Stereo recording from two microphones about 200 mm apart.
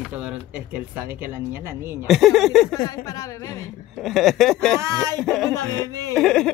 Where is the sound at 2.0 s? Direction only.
Centre (ahead or behind).